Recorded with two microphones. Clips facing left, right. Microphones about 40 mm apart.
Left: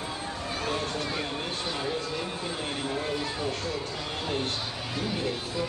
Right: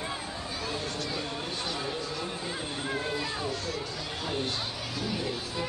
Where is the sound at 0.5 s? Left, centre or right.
Left.